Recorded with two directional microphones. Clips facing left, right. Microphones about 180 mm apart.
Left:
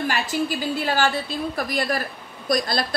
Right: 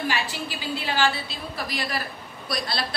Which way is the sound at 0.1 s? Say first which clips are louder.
Left 5 dB; 45° left (ahead or behind).